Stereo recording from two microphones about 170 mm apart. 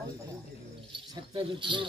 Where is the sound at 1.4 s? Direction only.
30° right (ahead or behind).